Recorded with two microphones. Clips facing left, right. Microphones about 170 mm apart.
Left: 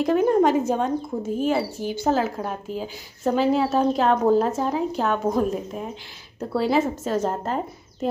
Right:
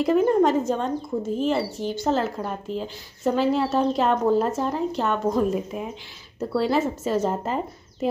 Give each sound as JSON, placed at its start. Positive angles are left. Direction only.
{"t": 0.0, "sound": "speech", "side_deg": 0}